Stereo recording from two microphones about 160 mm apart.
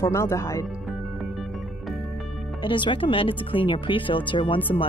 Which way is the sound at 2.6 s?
30° left (ahead or behind).